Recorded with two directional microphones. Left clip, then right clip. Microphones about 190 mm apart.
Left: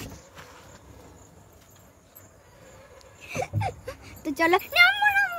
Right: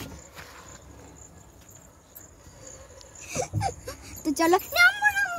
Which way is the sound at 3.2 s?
10° right (ahead or behind).